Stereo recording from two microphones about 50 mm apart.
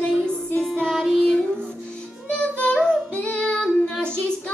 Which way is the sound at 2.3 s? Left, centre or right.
Left.